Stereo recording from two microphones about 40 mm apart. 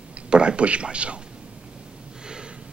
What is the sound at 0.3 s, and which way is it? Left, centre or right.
Speech, right.